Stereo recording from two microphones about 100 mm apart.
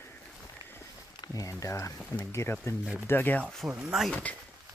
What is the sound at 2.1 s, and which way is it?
Speech, 20° left (ahead or behind).